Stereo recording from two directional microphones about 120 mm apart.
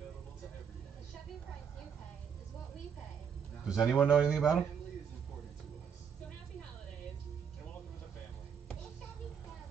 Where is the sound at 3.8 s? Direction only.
Centre (ahead or behind).